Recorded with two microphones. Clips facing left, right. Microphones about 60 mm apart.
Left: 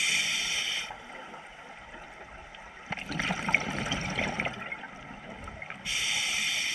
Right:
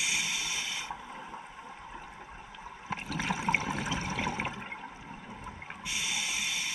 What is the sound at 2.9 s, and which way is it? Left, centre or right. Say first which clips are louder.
Toilet flush: left 1 dB; left.